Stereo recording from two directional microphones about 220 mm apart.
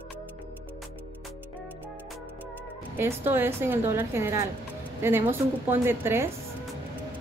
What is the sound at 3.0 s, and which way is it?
A woman's voice, 10° right (ahead or behind).